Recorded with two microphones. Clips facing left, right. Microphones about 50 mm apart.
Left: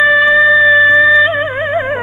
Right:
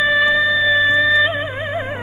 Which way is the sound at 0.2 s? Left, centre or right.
Left.